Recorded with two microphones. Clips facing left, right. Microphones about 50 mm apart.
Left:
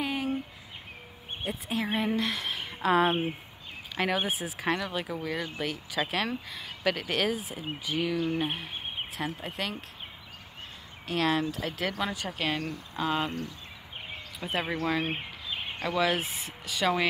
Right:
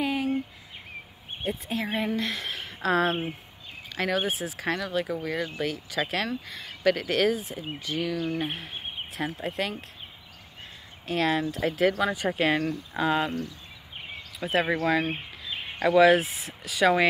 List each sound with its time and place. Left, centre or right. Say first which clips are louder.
0.0 s a sound: right 4 dB; centre
1.4 s speech: right 2 dB; centre
11.1 s speech: right 2 dB; centre
12.1 s speech: right 7 dB; centre
13.0 s speech: right 4 dB; centre
14.4 s speech: right 6 dB; centre
15.9 s speech: right 9 dB; centre